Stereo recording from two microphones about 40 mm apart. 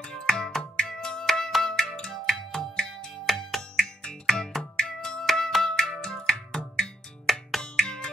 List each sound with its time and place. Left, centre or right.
0.0 s music: centre
6.0 s music: centre
7.6 s music: centre